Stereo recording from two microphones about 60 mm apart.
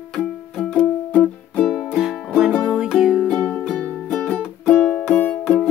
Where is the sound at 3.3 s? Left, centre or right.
Left.